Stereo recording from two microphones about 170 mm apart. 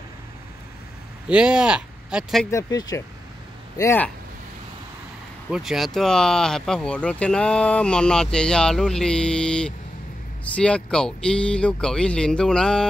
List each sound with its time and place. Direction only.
1.3 s speech: 5° right (ahead or behind)
2.5 s speech: 20° left (ahead or behind)
5.5 s speech: centre (ahead or behind)